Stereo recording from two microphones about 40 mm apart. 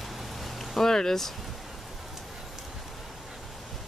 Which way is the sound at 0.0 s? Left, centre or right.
Centre.